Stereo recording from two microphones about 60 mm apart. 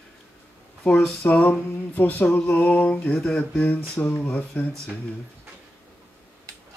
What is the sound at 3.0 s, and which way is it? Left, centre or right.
Speech, centre.